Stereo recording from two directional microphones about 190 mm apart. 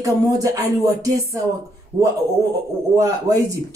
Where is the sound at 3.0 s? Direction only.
20° right (ahead or behind).